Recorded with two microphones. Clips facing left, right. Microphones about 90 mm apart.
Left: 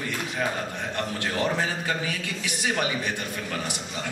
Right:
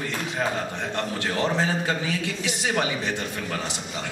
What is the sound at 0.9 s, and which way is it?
A man's voice, 25° right (ahead or behind).